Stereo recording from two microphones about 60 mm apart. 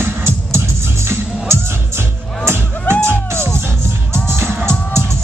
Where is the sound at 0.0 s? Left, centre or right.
Right.